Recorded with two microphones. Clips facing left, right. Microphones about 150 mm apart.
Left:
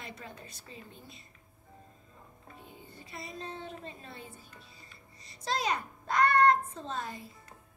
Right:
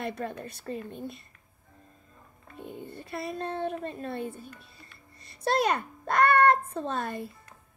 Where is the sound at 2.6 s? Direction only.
60° right (ahead or behind).